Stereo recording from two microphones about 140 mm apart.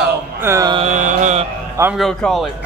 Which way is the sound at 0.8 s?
65° right (ahead or behind).